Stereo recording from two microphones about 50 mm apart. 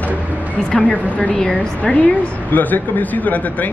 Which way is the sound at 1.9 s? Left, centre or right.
Left.